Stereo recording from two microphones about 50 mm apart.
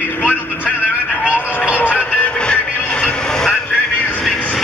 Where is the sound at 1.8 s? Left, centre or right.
Left.